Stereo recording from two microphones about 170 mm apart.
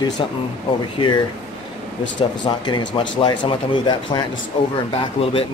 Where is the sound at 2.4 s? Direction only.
25° left (ahead or behind).